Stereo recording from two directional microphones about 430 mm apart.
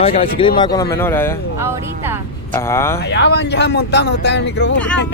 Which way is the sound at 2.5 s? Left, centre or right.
Centre.